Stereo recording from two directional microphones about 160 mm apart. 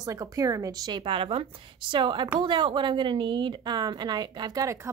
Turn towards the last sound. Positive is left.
turn(degrees=-20)  # may be behind; listen again after turning